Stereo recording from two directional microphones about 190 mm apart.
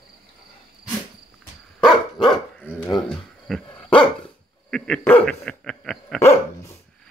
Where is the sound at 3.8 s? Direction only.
25° left (ahead or behind).